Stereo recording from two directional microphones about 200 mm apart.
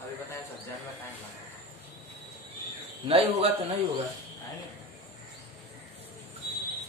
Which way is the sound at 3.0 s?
30° right (ahead or behind).